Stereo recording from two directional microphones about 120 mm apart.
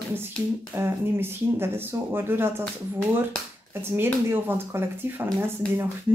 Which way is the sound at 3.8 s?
20° right (ahead or behind).